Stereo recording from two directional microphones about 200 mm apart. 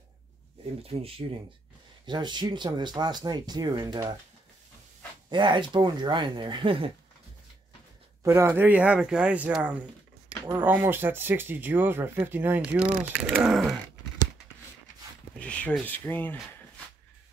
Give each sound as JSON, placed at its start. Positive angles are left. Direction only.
{"t": 0.8, "sound": "speech", "side_deg": -30}
{"t": 5.3, "sound": "speech", "side_deg": -25}
{"t": 8.2, "sound": "speech", "side_deg": -15}
{"t": 15.3, "sound": "speech", "side_deg": 5}